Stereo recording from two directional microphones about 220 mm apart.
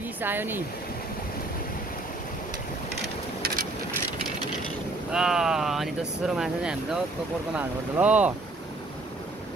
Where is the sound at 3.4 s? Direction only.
40° right (ahead or behind).